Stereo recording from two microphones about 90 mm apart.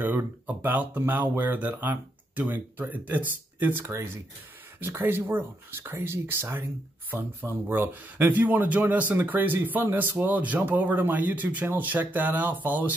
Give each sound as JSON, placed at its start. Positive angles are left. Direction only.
{"t": 0.0, "sound": "a man's voice", "side_deg": -20}